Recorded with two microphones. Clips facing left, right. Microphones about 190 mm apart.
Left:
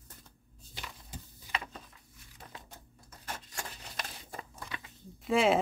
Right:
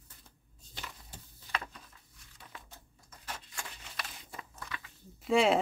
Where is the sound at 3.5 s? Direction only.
40° left (ahead or behind).